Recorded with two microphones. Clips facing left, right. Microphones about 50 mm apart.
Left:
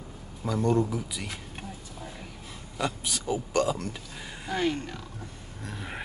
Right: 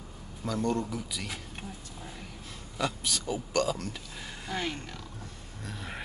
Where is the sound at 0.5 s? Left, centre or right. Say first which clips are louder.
Left 5 dB; centre.